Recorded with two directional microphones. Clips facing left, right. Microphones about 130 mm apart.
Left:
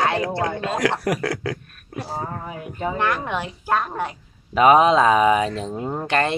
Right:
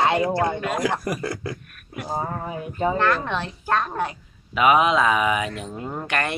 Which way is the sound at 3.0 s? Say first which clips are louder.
Right 1 dB; 15° left (ahead or behind).